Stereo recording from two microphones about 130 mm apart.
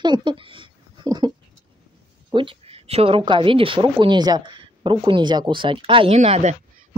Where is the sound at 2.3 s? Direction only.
45° right (ahead or behind).